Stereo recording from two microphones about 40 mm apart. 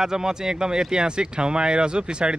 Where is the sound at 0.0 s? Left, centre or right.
Centre.